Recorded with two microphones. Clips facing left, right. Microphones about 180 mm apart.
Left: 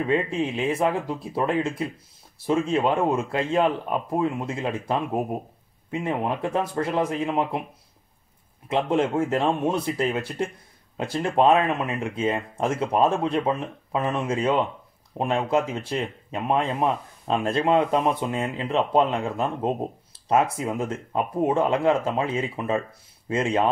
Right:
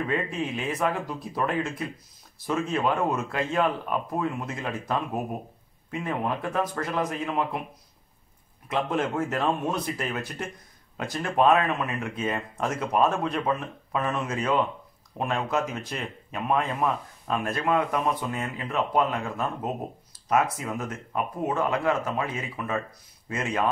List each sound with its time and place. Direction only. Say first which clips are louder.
0.0 s speech: left 5 dB; 25° left (ahead or behind)
8.6 s speech: left 4 dB; 30° left (ahead or behind)